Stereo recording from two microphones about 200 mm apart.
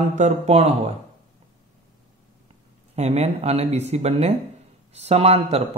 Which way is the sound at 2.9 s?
35° right (ahead or behind).